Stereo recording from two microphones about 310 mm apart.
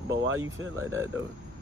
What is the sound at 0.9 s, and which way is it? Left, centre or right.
Speech, centre.